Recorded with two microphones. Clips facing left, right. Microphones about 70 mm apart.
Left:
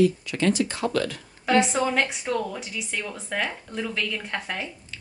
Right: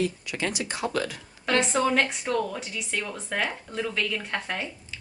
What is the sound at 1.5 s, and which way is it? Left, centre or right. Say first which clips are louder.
Speech: left 2 dB; centre.